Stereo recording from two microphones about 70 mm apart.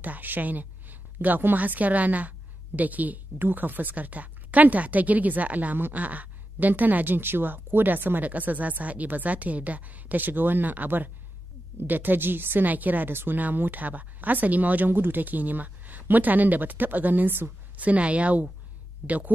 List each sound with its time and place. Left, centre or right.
0.0 s a woman's voice: right